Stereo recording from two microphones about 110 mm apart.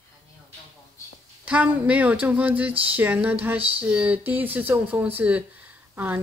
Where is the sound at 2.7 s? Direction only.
60° right (ahead or behind).